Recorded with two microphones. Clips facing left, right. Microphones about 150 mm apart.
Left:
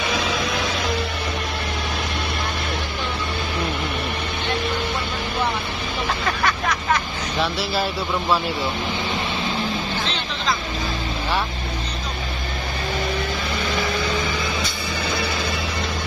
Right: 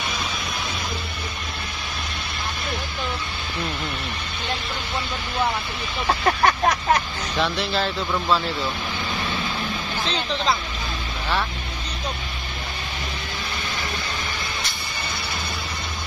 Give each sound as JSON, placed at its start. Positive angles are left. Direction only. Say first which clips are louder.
{"t": 6.2, "sound": "vehicle", "louder": "right 6 dB", "side_deg": -45}
{"t": 7.3, "sound": "speech", "louder": "even", "side_deg": 5}